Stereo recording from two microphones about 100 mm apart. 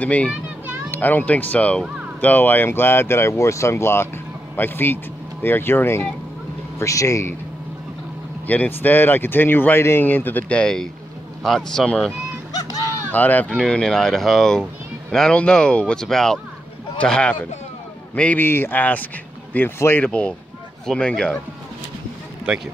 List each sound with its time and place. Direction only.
0.0 s a man's voice: 15° left (ahead or behind); by 7.3 s 30° left (ahead or behind)
8.5 s speech: 15° left (ahead or behind)
13.1 s speech: 15° left (ahead or behind)
22.5 s speech: 10° right (ahead or behind)